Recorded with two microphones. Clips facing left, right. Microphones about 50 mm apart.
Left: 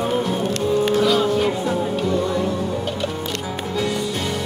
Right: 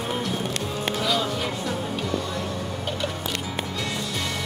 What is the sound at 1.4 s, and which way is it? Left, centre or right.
Music, centre.